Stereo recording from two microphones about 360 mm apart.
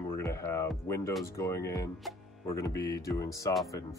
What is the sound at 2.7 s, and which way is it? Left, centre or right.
Speech, left.